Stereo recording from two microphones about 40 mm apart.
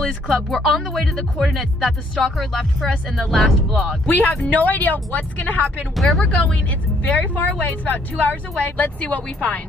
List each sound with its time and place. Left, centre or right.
0.0 s speech: centre
4.1 s speech: left